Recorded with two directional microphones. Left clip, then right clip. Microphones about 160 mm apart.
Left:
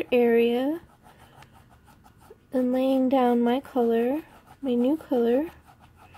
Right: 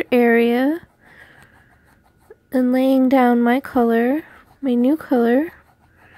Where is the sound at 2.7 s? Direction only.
60° right (ahead or behind).